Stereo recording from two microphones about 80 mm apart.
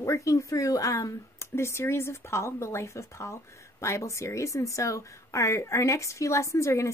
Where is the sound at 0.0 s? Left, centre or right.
Left.